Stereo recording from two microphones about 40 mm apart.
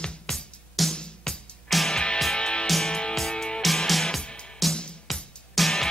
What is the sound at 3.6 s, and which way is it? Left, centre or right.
Music, centre.